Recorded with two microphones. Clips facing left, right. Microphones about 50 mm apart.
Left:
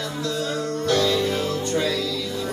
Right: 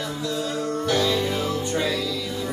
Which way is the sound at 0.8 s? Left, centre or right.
Centre.